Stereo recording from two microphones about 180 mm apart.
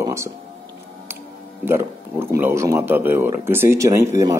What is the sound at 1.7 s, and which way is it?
Speech, 15° right (ahead or behind).